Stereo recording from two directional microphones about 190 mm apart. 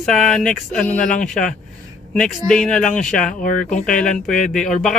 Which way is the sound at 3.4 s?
40° left (ahead or behind).